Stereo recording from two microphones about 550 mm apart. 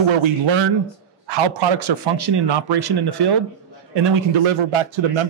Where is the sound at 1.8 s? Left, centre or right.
Right.